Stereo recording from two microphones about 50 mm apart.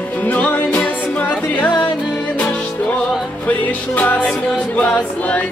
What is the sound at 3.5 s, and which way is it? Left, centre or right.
Music, left.